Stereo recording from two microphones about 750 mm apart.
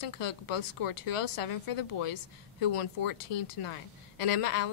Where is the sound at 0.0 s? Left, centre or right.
Left.